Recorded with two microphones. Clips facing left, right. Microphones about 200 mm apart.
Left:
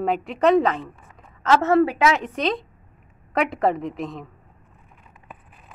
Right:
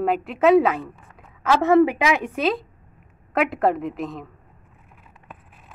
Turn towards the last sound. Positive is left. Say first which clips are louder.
# right 1 dB
turn(degrees=0)  # may be behind; listen again after turning